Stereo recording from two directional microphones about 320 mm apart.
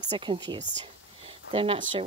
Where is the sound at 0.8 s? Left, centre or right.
Centre.